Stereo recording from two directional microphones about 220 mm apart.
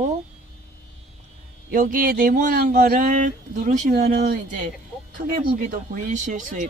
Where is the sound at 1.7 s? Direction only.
35° right (ahead or behind).